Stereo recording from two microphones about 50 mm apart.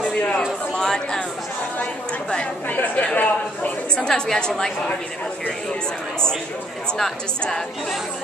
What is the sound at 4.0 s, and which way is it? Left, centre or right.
A woman's voice, centre.